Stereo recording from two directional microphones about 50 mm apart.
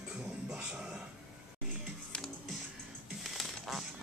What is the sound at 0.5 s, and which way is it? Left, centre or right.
Music, centre.